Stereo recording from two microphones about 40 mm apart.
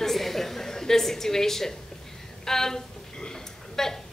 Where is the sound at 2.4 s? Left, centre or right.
Centre.